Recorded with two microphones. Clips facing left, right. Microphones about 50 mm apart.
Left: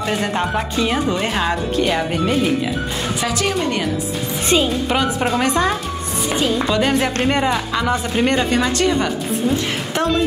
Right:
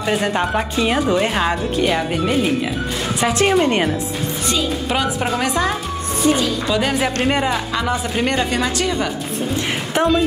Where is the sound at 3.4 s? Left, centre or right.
Right.